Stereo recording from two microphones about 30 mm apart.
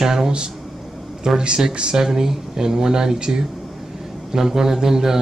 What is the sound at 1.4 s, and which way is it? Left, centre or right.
Speech, right.